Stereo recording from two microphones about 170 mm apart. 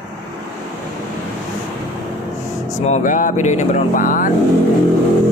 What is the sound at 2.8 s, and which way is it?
Speech, 45° left (ahead or behind).